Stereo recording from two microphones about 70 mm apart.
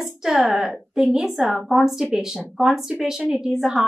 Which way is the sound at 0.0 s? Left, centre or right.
Centre.